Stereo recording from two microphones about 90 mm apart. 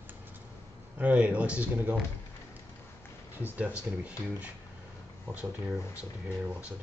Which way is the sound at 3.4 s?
20° right (ahead or behind).